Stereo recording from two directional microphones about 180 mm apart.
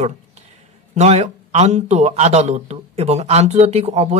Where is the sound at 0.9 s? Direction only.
40° right (ahead or behind).